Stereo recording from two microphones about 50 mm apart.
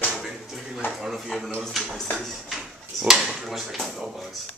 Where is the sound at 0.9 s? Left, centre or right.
Centre.